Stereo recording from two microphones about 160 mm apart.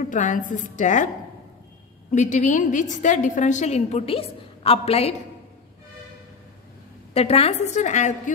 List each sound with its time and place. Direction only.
0.0 s a woman's voice: 55° left (ahead or behind)
7.2 s a woman's voice: 40° left (ahead or behind)